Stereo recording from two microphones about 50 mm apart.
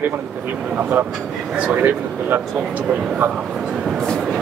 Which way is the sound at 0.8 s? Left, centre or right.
Right.